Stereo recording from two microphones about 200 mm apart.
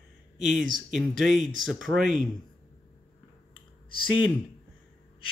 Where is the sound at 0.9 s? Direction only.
Centre (ahead or behind).